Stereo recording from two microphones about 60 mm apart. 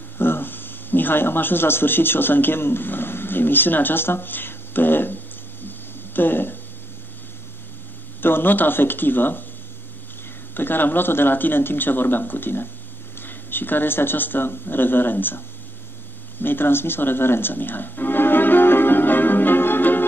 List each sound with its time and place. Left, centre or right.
0.2 s a man's voice: left
5.7 s a sound: left
8.2 s speech: left
10.5 s speech: left
16.3 s music: left